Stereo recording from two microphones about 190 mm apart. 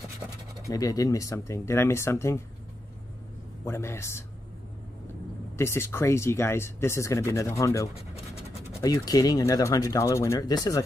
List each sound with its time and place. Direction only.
0.7 s speech: 15° left (ahead or behind)
3.6 s speech: 15° left (ahead or behind)
5.6 s speech: 15° left (ahead or behind)